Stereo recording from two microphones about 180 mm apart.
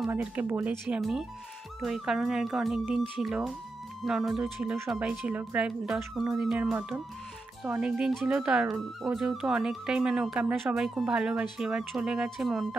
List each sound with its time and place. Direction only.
0.0 s speech: 5° right (ahead or behind)